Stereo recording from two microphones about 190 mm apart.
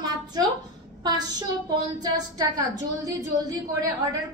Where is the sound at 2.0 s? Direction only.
20° right (ahead or behind).